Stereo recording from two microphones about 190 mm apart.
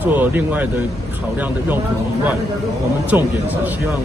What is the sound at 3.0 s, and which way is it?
Speech, 10° right (ahead or behind).